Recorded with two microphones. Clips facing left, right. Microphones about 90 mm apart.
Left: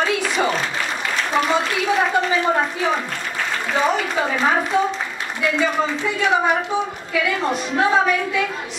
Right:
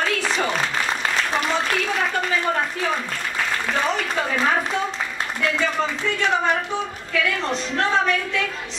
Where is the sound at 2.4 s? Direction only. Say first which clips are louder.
Left 3 dB; 20° left (ahead or behind).